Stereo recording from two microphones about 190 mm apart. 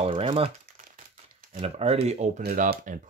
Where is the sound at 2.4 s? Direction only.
50° right (ahead or behind).